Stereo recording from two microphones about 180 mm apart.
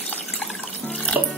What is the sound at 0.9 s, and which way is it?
Music, 5° left (ahead or behind).